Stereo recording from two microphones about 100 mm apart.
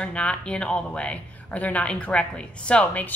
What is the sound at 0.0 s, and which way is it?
Speech, 10° left (ahead or behind).